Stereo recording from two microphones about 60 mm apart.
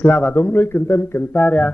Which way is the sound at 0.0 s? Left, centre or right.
Left.